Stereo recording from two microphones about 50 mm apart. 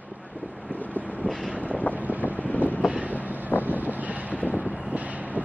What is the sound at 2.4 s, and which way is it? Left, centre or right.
Vehicle, left.